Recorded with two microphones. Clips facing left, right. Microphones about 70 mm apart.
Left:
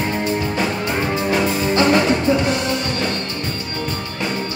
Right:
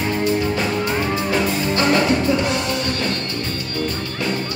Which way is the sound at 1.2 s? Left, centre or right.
Left.